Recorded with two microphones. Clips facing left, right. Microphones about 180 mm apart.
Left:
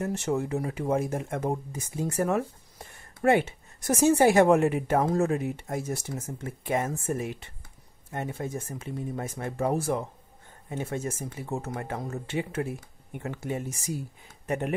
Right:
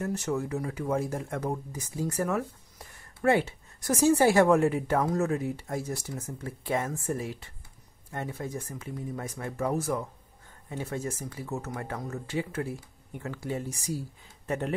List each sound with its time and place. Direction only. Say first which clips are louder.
0.0 s speech: left 2 dB; 25° left (ahead or behind)